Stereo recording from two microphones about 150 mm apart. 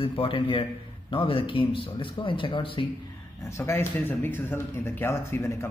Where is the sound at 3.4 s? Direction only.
20° left (ahead or behind).